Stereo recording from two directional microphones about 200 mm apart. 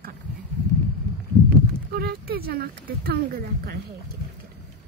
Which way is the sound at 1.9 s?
50° right (ahead or behind).